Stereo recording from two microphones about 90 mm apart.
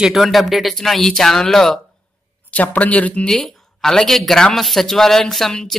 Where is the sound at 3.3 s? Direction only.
5° left (ahead or behind).